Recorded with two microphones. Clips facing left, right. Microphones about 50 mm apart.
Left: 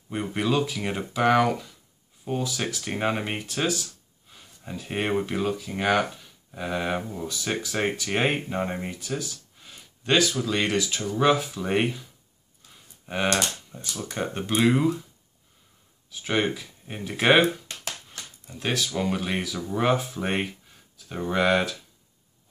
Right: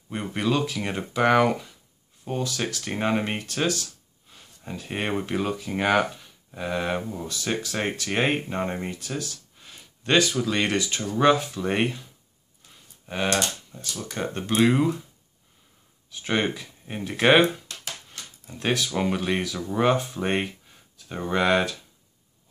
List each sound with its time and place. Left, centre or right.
0.1 s speech: centre
2.2 s speech: centre
3.3 s speech: centre
4.7 s speech: centre
13.0 s speech: centre
16.1 s speech: centre
18.5 s speech: centre